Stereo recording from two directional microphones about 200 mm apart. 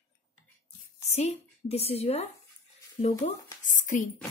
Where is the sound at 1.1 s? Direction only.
35° left (ahead or behind).